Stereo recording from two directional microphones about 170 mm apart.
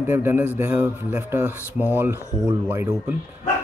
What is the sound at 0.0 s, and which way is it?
Speech, 10° right (ahead or behind).